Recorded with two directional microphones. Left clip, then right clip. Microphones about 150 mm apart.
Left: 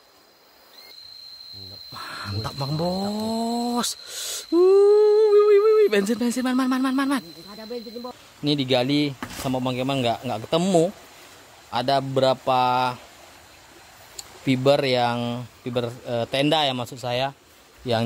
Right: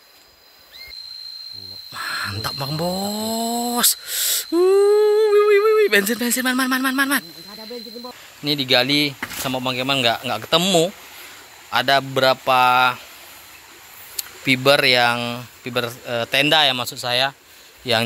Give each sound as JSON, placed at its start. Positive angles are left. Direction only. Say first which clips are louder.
{"t": 1.9, "sound": "speech", "louder": "right 9 dB", "side_deg": 0}
{"t": 3.2, "sound": "a sound", "louder": "right 3 dB", "side_deg": 0}
{"t": 8.5, "sound": "speech", "louder": "right 4 dB", "side_deg": 20}
{"t": 14.1, "sound": "speech", "louder": "right 6 dB", "side_deg": 10}